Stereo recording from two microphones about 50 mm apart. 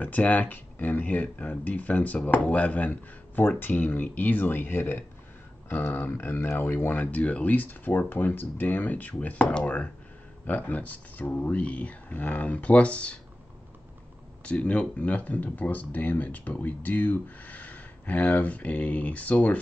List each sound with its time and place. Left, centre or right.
0.0 s speech: left
14.4 s speech: left